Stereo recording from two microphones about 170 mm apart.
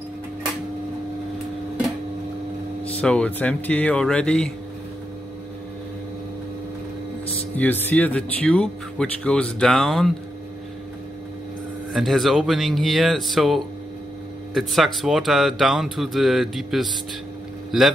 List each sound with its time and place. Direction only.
3.0 s speech: 5° left (ahead or behind)
7.5 s speech: 10° left (ahead or behind)
11.9 s speech: centre (ahead or behind)